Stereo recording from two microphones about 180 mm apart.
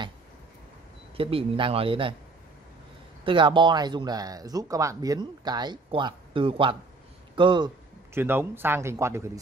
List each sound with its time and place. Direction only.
1.1 s speech: 30° right (ahead or behind)
3.3 s speech: 25° right (ahead or behind)
8.1 s speech: 10° right (ahead or behind)